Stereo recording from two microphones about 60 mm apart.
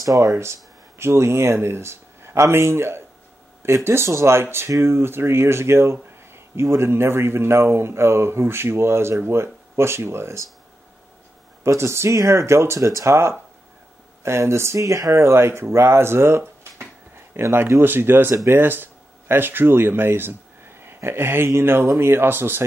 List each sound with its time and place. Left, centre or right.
0.0 s speech: right
0.3 s speech: right
11.6 s speech: right
12.1 s speech: right